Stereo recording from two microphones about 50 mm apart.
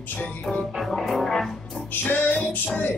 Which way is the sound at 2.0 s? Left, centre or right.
Left.